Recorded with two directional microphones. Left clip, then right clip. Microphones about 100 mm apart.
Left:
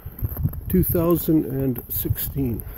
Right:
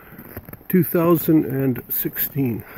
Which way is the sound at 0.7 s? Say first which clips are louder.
Right 3 dB; 25° left (ahead or behind).